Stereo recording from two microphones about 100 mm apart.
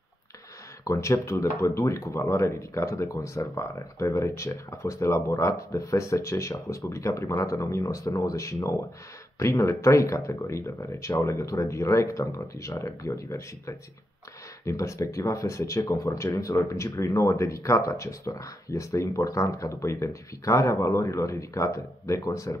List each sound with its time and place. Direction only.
0.8 s speech: 30° left (ahead or behind)